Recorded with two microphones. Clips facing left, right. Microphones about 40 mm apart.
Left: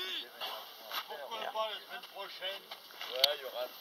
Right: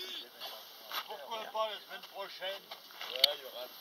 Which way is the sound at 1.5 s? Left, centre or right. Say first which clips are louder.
Right 4 dB; centre.